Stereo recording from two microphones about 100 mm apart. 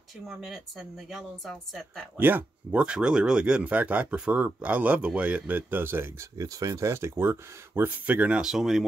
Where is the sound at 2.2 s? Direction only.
20° right (ahead or behind).